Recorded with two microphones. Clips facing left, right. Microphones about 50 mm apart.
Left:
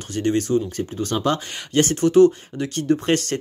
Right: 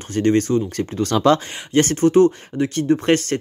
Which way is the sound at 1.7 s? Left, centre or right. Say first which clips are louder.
Right 2 dB; right.